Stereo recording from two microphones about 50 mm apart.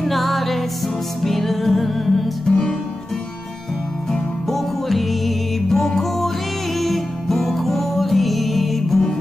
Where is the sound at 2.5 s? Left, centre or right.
Centre.